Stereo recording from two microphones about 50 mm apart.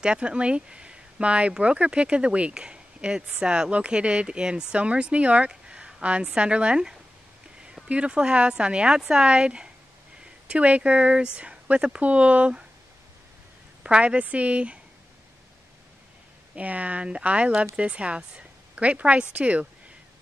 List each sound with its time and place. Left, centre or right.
0.0 s speech: centre
13.8 s speech: right
16.5 s speech: right